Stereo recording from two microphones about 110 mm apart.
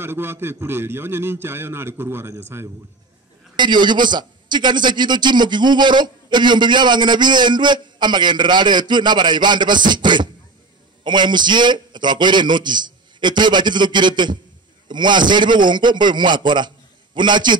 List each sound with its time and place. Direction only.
0.0 s a man's voice: 20° right (ahead or behind)
3.5 s a man's voice: 45° right (ahead or behind)